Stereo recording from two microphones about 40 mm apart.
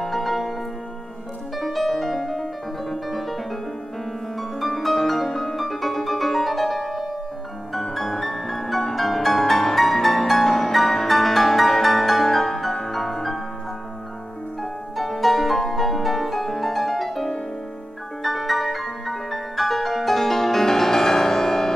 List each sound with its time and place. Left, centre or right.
0.0 s music: centre
1.6 s music: centre
14.6 s music: centre